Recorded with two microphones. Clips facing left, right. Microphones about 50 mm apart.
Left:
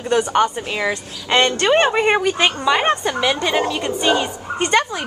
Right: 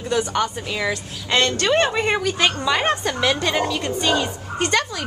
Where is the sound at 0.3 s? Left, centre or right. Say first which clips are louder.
Left 5 dB; left.